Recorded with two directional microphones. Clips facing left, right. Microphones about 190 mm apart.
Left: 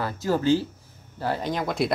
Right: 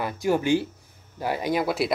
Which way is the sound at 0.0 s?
15° right (ahead or behind).